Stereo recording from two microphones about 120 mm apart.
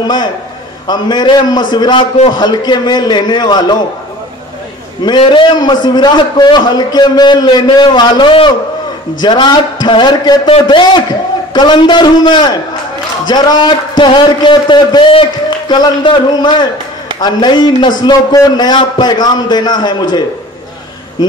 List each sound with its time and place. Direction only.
0.0 s a man's voice: 40° left (ahead or behind)
5.0 s a man's voice: 40° left (ahead or behind)